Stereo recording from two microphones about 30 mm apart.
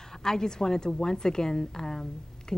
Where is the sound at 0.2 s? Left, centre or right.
Centre.